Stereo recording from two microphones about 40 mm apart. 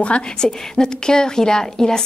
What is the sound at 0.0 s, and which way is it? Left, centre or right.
A woman's voice, left.